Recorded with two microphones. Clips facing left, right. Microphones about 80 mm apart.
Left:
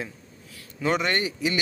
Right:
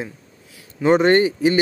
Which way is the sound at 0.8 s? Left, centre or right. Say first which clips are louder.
Right 10 dB; right.